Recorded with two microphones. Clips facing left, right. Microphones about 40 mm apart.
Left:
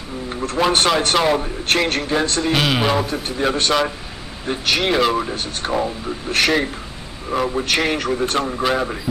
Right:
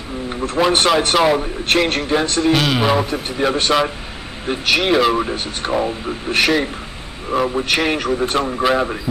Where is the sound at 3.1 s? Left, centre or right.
Centre.